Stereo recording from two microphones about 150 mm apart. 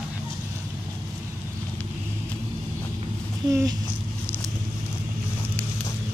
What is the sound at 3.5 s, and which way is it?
Speech, 20° right (ahead or behind).